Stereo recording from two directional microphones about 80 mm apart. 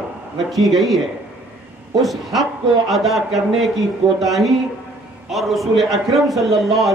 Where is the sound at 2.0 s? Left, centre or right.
Centre.